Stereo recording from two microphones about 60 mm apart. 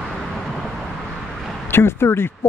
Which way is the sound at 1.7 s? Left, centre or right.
Left.